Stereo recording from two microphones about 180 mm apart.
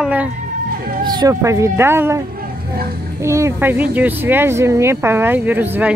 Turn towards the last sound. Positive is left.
turn(degrees=-10)  # may be behind; listen again after turning